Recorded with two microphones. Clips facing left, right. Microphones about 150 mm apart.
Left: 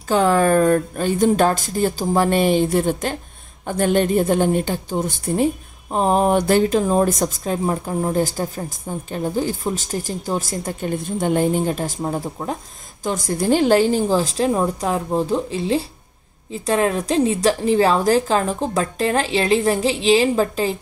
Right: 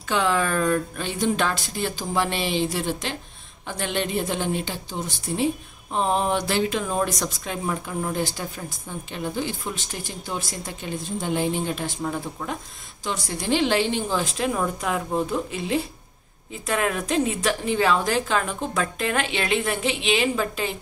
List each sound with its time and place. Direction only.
0.1 s a woman's voice: 45° left (ahead or behind)